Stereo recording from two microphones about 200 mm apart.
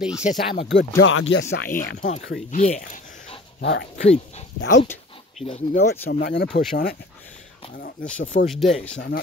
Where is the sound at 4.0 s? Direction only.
35° left (ahead or behind).